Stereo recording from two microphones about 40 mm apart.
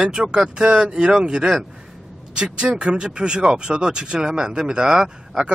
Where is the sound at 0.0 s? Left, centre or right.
Centre.